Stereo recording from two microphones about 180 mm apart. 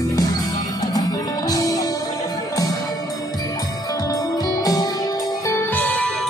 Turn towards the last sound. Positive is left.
turn(degrees=10)  # may be behind; listen again after turning